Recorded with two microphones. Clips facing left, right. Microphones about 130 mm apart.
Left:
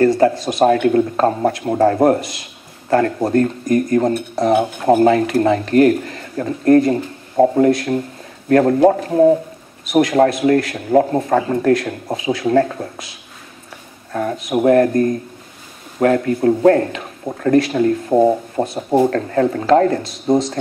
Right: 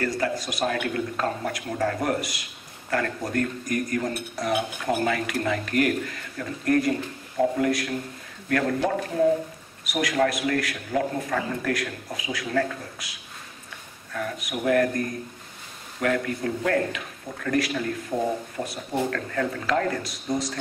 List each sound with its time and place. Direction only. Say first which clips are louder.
0.0 s speech: left 13 dB; 30° left (ahead or behind)
14.1 s speech: left 11 dB; 30° left (ahead or behind)